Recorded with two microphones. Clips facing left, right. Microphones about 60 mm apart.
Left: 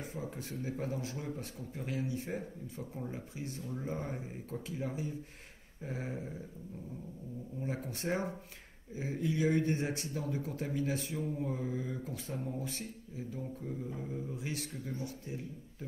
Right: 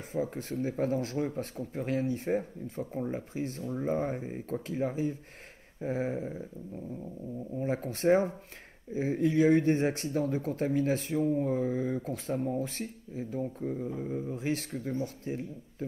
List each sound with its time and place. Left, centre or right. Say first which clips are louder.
0.1 s speech: right 9 dB; right
3.7 s speech: right 9 dB; right
7.6 s speech: right 10 dB; right
14.3 s speech: right 8 dB; right